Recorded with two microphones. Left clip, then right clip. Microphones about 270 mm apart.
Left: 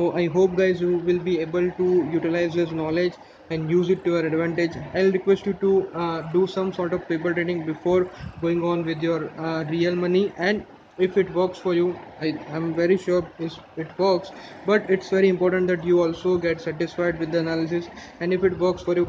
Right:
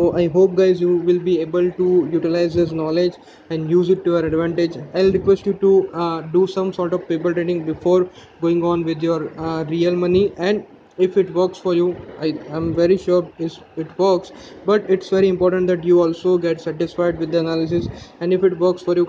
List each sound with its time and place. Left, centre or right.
0.0 s a man's voice: centre